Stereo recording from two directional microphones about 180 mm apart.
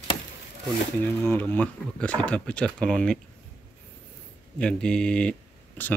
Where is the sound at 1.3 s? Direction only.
10° left (ahead or behind).